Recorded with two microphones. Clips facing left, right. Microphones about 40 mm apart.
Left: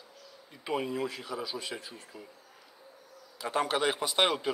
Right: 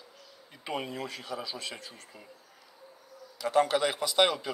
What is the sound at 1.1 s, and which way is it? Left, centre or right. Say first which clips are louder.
Speech: left 1 dB; centre.